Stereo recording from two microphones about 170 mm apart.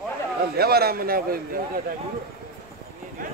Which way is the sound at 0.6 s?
65° right (ahead or behind).